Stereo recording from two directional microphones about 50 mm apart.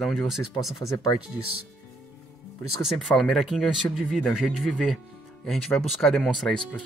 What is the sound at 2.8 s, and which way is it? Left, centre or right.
Speech, centre.